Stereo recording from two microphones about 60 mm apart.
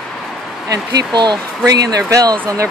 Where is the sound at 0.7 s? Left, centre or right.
Right.